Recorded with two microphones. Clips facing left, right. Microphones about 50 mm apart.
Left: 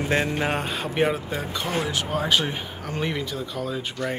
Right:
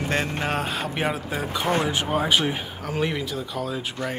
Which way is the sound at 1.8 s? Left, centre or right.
Centre.